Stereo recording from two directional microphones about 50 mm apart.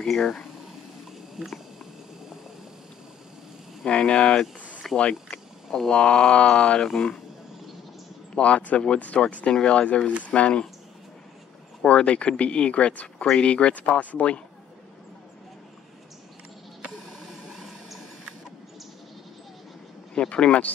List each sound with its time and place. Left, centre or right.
0.2 s speech: centre
3.8 s speech: centre
4.9 s speech: centre; by 6.9 s left
8.4 s speech: left
11.8 s speech: left
20.2 s speech: centre